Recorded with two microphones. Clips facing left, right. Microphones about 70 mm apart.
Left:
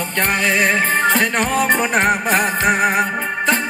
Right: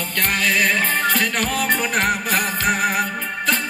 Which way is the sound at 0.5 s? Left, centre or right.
Left.